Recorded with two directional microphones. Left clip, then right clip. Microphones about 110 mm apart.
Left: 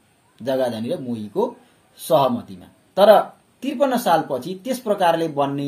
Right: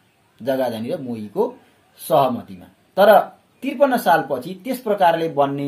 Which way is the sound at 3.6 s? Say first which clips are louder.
Right 3 dB; 15° left (ahead or behind).